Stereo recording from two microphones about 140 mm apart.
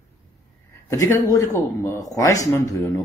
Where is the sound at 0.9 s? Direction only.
25° left (ahead or behind).